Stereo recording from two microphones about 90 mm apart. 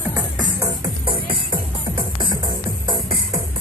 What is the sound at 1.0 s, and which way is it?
Music, 80° right.